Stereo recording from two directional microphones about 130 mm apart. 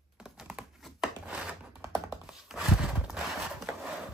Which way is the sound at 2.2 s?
5° right (ahead or behind).